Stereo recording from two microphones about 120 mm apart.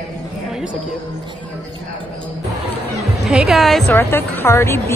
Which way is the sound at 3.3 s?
5° right (ahead or behind).